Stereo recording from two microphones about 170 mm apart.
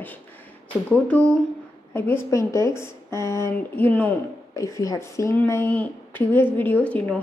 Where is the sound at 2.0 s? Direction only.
15° left (ahead or behind).